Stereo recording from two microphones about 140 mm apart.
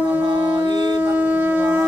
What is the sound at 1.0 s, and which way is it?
Shofar, 10° right (ahead or behind).